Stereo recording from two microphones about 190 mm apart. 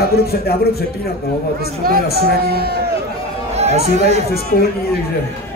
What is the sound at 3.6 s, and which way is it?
Chatter, 35° right (ahead or behind).